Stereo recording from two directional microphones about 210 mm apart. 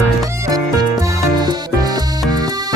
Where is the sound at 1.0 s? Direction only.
15° right (ahead or behind).